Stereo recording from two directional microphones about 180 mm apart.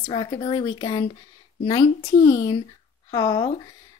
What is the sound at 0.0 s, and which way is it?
Speech, 25° left (ahead or behind).